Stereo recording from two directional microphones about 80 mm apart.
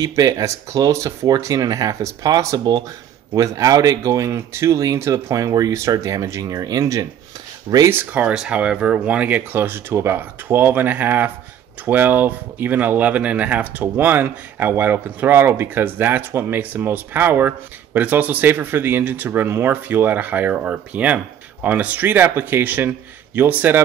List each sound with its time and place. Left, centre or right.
0.0 s speech: right
7.9 s speech: right